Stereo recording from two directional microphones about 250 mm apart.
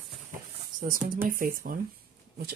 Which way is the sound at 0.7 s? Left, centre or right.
Right.